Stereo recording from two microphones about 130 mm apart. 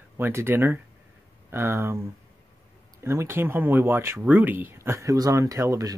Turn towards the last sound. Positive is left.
turn(degrees=-25)  # may be behind; listen again after turning